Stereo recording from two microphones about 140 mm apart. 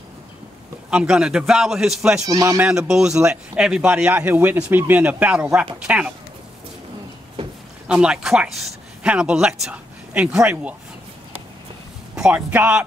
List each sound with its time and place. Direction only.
0.8 s a man's voice: 5° right (ahead or behind)
2.2 s speech: 25° right (ahead or behind)
2.6 s speech: 5° right (ahead or behind)
7.9 s a man's voice: 5° right (ahead or behind)
12.2 s speech: 10° right (ahead or behind)